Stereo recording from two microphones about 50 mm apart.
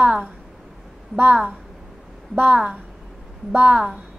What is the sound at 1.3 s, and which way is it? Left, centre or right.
Speech, centre.